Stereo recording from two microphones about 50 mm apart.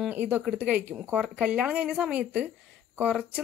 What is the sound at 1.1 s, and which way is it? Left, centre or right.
Speech, centre.